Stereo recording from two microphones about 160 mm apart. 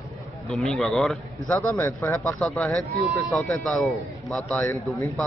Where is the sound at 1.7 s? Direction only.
15° left (ahead or behind).